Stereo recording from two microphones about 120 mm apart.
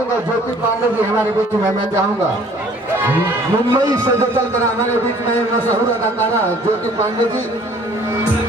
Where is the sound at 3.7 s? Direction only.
30° right (ahead or behind).